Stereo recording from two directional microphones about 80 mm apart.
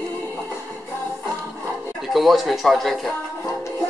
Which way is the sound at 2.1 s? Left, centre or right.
Centre.